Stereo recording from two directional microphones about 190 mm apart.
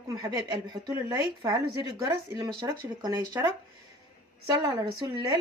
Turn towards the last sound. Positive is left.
turn(degrees=-20)  # may be behind; listen again after turning